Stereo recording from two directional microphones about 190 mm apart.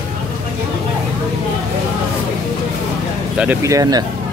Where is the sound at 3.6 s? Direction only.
20° right (ahead or behind).